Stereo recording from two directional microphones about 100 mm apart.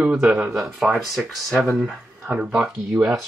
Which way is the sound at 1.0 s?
Centre (ahead or behind).